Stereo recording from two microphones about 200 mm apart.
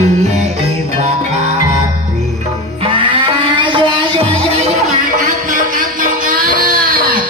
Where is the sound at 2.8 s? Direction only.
25° right (ahead or behind); by 7.2 s 45° right (ahead or behind).